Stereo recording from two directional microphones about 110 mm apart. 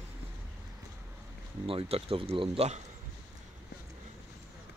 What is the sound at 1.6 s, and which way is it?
Speech, 60° right (ahead or behind).